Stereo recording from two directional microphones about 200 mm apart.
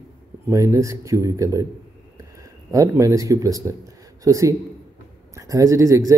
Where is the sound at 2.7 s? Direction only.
15° right (ahead or behind).